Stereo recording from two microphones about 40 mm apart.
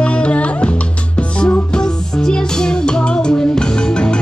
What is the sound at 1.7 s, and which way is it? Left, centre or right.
Music, centre.